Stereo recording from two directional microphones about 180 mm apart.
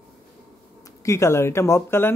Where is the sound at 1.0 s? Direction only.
15° left (ahead or behind).